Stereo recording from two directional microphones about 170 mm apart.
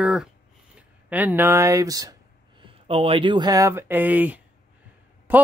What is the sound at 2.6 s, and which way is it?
Speech, 35° right (ahead or behind).